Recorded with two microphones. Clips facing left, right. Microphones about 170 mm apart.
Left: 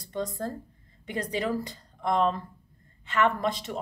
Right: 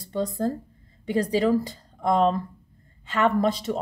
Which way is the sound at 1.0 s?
35° right (ahead or behind).